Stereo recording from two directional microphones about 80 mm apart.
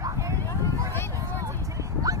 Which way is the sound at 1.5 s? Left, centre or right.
Right.